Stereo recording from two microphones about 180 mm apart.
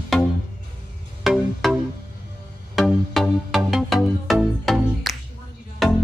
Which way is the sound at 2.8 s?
Centre (ahead or behind).